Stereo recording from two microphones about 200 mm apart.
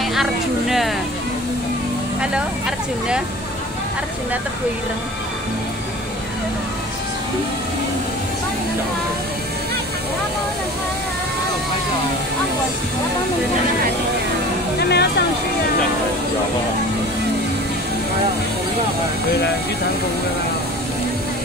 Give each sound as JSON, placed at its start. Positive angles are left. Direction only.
{"t": 0.0, "sound": "speech", "side_deg": 0}
{"t": 14.8, "sound": "speech", "side_deg": 55}